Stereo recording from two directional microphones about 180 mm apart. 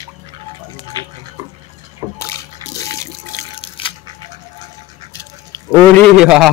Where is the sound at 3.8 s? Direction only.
30° left (ahead or behind).